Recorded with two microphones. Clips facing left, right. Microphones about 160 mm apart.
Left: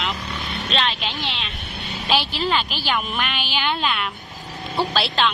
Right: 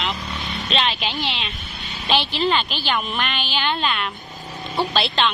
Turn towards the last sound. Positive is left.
turn(degrees=0)  # may be behind; listen again after turning